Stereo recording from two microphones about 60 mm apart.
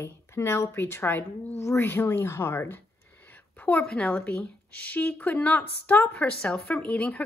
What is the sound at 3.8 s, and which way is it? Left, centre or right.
Speech, centre.